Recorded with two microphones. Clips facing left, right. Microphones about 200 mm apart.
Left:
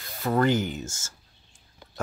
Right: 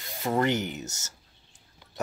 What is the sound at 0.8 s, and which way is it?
Speech, 70° right (ahead or behind).